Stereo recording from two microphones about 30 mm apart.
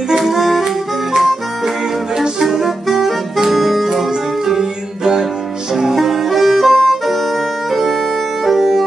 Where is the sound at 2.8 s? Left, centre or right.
Centre; by 5.3 s right.